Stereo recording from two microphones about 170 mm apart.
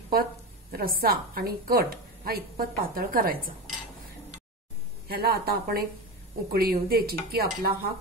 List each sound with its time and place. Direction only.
0.1 s a woman's voice: 65° right (ahead or behind)
5.0 s a woman's voice: 65° right (ahead or behind)